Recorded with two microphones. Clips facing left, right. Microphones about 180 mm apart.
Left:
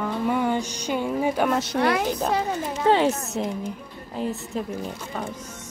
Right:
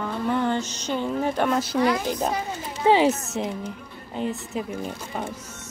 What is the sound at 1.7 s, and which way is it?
Speech, 60° left (ahead or behind).